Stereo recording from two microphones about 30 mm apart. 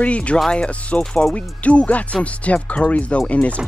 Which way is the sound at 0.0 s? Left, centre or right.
Left.